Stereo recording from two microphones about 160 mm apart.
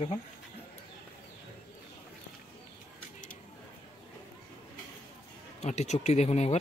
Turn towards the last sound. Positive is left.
turn(degrees=45)  # may be behind; listen again after turning